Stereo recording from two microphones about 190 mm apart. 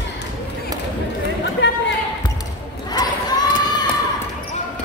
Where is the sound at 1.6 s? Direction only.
70° left (ahead or behind).